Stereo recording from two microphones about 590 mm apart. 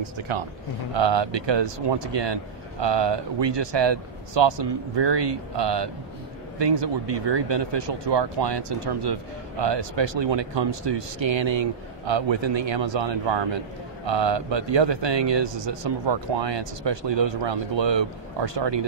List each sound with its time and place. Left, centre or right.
0.0 s speech: right